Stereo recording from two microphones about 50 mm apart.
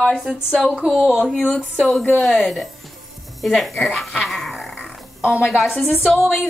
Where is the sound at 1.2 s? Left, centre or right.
Left.